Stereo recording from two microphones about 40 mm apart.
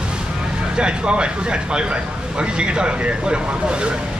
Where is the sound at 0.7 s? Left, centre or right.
Right.